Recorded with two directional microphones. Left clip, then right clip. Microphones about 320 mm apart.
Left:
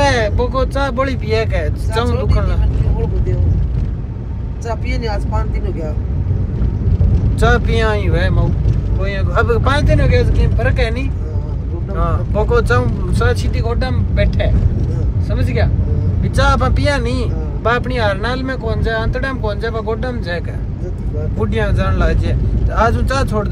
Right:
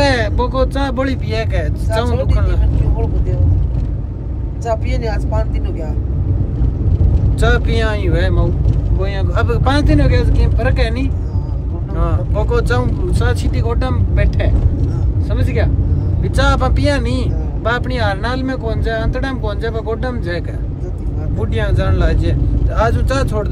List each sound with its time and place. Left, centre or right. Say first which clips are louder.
0.0 s a sound: even; centre
0.9 s speech: left 2 dB; centre
7.3 s speech: left 2 dB; centre
12.0 s speech: left 3 dB; centre